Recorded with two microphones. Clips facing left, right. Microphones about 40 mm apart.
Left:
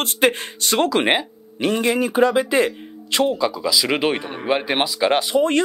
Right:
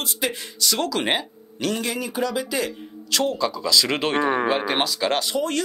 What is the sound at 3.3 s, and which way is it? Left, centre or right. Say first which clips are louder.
Speech: left 1 dB; centre.